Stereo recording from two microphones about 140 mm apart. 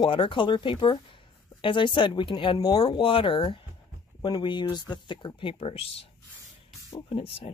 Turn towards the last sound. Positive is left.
turn(degrees=40)  # may be behind; listen again after turning